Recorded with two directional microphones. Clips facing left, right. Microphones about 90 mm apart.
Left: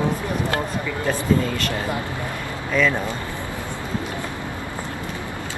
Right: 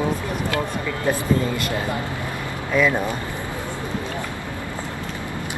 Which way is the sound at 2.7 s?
15° right (ahead or behind).